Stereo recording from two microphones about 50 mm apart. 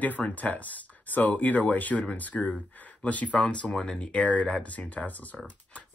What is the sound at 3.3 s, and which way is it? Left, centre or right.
Speech, left.